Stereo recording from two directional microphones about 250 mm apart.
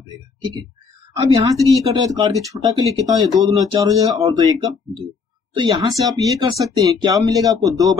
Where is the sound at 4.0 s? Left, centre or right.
Centre.